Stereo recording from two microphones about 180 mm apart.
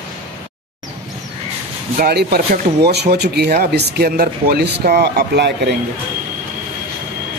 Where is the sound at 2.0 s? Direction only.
60° right (ahead or behind).